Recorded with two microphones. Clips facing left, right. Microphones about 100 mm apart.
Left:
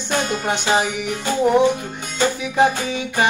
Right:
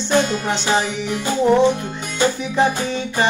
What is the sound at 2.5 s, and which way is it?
Music, 5° left (ahead or behind).